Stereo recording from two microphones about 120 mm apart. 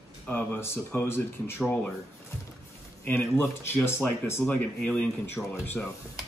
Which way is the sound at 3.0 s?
15° left (ahead or behind).